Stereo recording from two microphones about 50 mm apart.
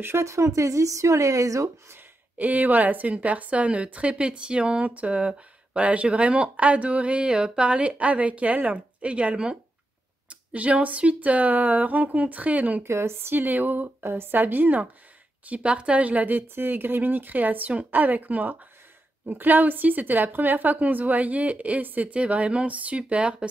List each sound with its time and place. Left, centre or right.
0.2 s speech: right
2.3 s a woman's voice: right
12.8 s speech: right
15.4 s a woman's voice: right